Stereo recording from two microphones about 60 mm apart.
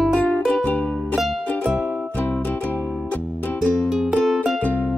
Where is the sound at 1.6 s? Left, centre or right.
Right.